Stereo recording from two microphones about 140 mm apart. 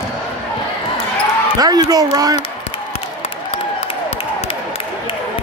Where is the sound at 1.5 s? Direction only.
25° right (ahead or behind).